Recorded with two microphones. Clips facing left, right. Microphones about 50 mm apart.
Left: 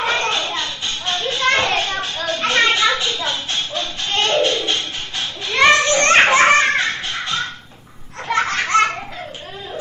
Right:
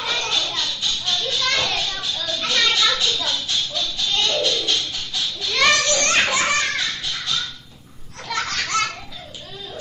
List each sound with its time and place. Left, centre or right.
0.0 s children playing: left
8.3 s belly laugh: left